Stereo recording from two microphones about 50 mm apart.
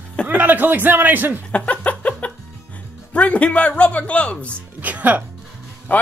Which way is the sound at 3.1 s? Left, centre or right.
Left.